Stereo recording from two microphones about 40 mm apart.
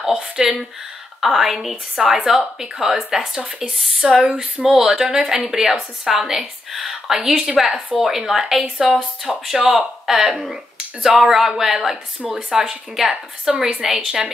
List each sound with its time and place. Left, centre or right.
0.0 s a woman's voice: centre
7.2 s a woman's voice: centre